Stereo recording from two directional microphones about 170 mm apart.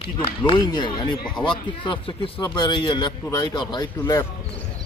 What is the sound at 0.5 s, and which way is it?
Speech, 25° left (ahead or behind).